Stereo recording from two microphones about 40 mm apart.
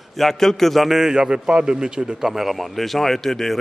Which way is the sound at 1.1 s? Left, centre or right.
Right.